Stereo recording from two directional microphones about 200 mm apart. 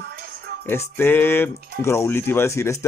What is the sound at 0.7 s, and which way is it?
Speech, 10° left (ahead or behind).